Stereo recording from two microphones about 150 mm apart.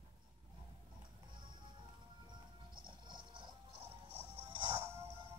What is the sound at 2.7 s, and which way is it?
Music, 30° right (ahead or behind).